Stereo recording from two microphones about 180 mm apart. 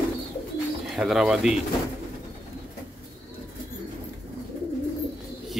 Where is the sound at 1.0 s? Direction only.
5° right (ahead or behind).